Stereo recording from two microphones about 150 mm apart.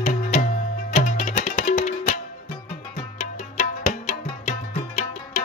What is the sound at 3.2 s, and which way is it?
Music, 50° left (ahead or behind).